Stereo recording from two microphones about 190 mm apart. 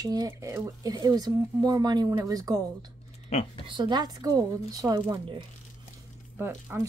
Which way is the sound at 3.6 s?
25° right (ahead or behind).